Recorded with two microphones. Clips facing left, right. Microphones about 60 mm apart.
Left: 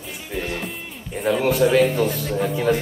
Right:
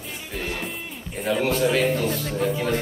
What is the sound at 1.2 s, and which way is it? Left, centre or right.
A man's voice, centre.